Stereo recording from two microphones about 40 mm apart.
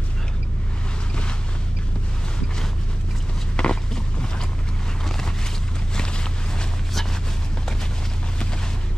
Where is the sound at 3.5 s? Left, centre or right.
Left.